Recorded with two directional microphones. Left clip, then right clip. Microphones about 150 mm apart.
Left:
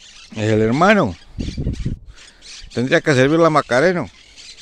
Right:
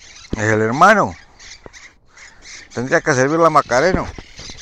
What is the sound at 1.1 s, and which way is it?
Speech, 45° left (ahead or behind).